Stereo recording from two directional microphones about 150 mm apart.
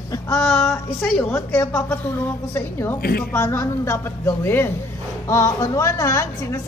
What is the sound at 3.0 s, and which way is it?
Speech, 90° left.